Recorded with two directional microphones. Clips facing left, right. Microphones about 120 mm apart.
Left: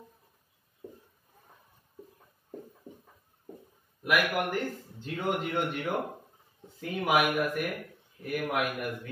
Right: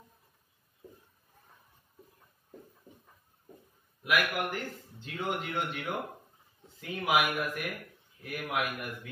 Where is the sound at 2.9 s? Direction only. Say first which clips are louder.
Left 7 dB; 20° left (ahead or behind).